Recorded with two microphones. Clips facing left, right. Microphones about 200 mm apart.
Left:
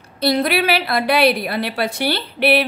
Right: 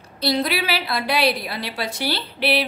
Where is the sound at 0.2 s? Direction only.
55° left (ahead or behind).